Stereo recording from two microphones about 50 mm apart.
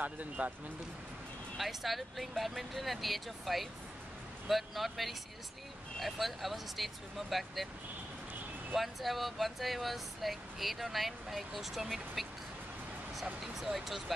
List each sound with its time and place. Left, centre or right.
0.0 s speech: right
1.6 s speech: centre
8.7 s speech: centre